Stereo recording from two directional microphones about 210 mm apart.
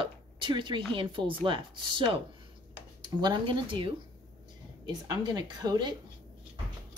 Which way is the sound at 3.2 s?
20° right (ahead or behind).